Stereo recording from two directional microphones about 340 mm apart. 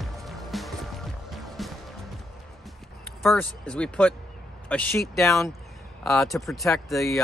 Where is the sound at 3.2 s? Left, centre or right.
Centre.